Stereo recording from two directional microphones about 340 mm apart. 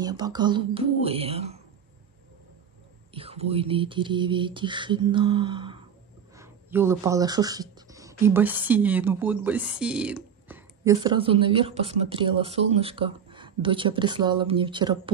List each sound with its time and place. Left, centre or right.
0.0 s speech: centre
3.1 s speech: centre